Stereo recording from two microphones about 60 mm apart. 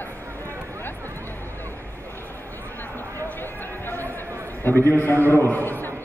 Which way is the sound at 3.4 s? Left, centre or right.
Left.